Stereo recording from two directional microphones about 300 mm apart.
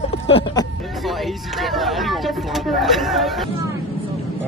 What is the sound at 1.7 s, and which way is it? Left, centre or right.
Speech, centre.